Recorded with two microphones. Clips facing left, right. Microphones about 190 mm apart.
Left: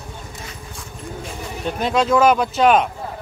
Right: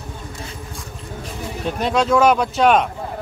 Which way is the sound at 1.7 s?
Centre (ahead or behind).